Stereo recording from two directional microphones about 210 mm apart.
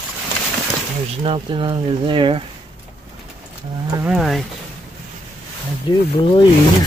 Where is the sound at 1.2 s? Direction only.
25° right (ahead or behind).